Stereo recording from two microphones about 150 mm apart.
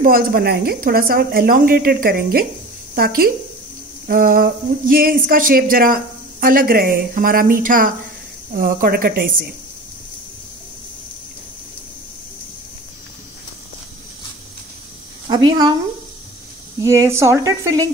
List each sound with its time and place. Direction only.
0.0 s speech: 75° right (ahead or behind)
8.5 s speech: 75° right (ahead or behind)
15.2 s a sound: 25° right (ahead or behind)
16.8 s a woman's voice: 20° right (ahead or behind)